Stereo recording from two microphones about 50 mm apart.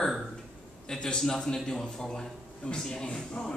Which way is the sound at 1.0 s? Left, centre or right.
Centre.